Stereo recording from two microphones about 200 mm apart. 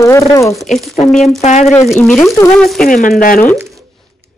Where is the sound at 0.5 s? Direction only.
Centre (ahead or behind).